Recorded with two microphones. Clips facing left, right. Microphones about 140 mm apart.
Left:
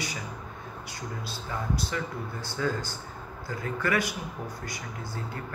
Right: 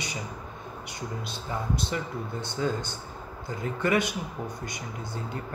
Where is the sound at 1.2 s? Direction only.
20° right (ahead or behind).